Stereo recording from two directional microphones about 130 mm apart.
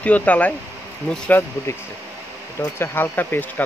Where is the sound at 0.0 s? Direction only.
10° left (ahead or behind).